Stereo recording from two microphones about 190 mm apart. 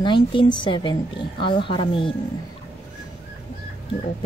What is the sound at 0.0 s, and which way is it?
A woman's voice, 25° left (ahead or behind).